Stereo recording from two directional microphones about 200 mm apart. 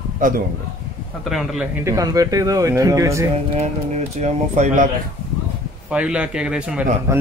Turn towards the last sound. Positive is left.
turn(degrees=-15)  # may be behind; listen again after turning